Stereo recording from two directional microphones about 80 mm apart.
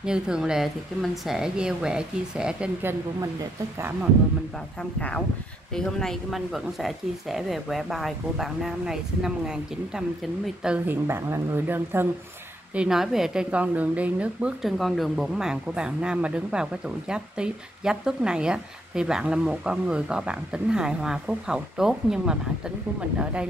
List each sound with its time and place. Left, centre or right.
0.0 s speech: centre
5.8 s speech: centre
10.9 s speech: right
12.7 s speech: centre
14.6 s speech: centre